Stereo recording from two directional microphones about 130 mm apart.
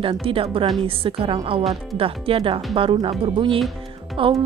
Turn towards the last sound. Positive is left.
turn(degrees=-45)  # may be behind; listen again after turning